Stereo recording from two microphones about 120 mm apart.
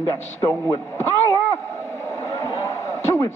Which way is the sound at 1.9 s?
25° left (ahead or behind).